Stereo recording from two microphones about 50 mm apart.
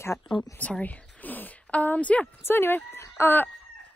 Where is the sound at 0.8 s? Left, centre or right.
Left.